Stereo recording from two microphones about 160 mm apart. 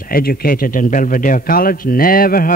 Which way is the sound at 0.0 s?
65° left (ahead or behind).